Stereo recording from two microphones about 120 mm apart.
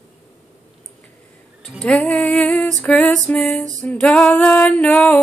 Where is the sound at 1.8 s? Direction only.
10° left (ahead or behind).